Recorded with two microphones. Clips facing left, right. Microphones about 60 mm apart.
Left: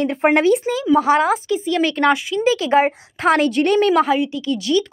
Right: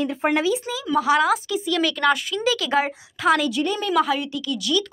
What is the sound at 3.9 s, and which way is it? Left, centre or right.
Speech, left.